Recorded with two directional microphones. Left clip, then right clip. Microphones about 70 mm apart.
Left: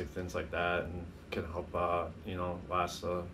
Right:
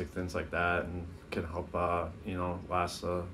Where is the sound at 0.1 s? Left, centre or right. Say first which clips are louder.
Right 2 dB; right.